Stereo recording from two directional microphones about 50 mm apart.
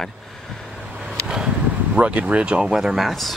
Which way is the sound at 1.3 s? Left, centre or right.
Centre.